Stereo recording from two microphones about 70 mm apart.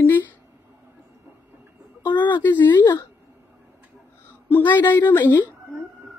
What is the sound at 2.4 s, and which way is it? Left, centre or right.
Speech, left.